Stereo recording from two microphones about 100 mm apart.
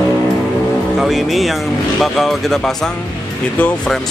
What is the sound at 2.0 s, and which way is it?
Speech, centre (ahead or behind).